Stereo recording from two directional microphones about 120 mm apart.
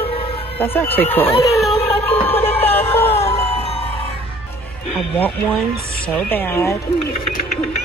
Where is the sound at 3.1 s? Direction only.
55° left (ahead or behind).